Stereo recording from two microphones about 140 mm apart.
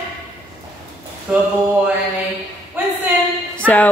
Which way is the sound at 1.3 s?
10° right (ahead or behind).